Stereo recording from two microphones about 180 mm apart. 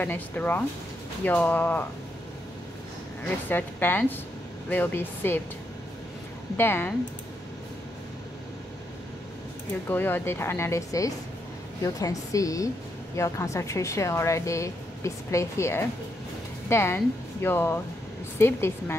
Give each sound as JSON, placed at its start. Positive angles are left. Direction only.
{"t": 0.0, "sound": "a woman's voice", "side_deg": 10}
{"t": 3.4, "sound": "a woman's voice", "side_deg": 10}
{"t": 6.5, "sound": "a woman's voice", "side_deg": 10}
{"t": 9.8, "sound": "a woman's voice", "side_deg": 10}